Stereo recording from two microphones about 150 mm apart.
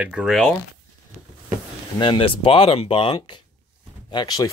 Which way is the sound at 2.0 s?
35° left (ahead or behind).